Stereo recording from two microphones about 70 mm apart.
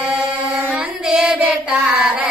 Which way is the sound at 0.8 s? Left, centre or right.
Centre.